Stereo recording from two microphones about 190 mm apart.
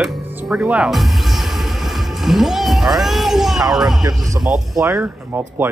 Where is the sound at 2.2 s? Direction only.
Centre (ahead or behind).